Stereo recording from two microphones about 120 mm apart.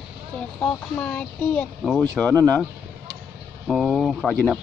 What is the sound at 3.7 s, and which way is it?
Speech, centre (ahead or behind).